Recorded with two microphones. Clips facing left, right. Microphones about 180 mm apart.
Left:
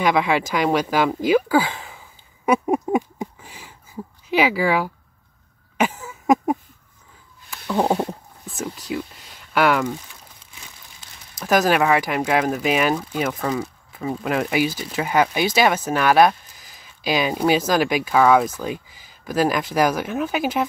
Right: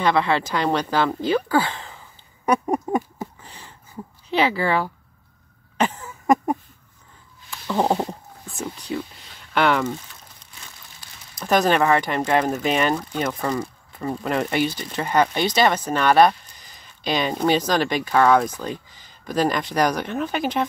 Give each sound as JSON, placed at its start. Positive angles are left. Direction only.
{"t": 0.0, "sound": "speech", "side_deg": 10}
{"t": 2.4, "sound": "a sound", "side_deg": 5}
{"t": 9.5, "sound": "speech", "side_deg": 5}
{"t": 11.0, "sound": "crumpling", "side_deg": 25}
{"t": 11.3, "sound": "speech", "side_deg": 5}